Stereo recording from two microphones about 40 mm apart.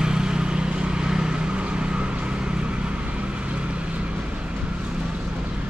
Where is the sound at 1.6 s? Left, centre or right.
Right.